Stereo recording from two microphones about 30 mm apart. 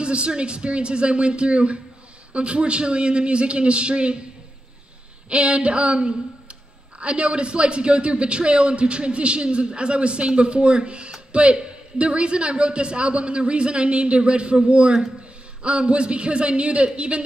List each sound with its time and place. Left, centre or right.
0.0 s a man's voice: right
5.3 s a man's voice: right